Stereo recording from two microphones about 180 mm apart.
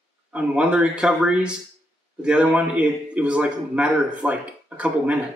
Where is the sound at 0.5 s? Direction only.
5° right (ahead or behind).